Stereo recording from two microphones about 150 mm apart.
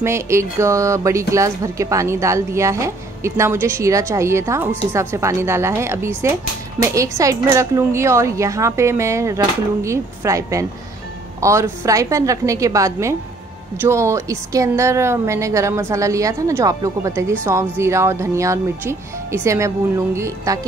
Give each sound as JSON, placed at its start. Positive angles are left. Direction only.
{"t": 0.0, "sound": "a woman's voice", "side_deg": -20}